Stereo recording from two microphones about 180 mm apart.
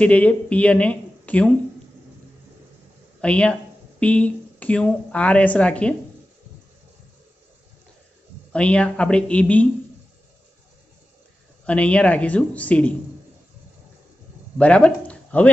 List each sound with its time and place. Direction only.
0.0 s speech: 5° left (ahead or behind)
3.2 s speech: 5° left (ahead or behind)
8.5 s speech: 5° left (ahead or behind)
11.6 s speech: 5° left (ahead or behind)
14.6 s speech: 5° left (ahead or behind)